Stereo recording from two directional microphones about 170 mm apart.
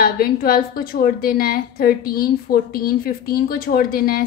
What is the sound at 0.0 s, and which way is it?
A woman's voice, 60° left (ahead or behind).